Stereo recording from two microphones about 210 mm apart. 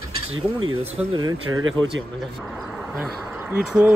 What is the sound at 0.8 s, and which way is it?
Speech, 30° right (ahead or behind).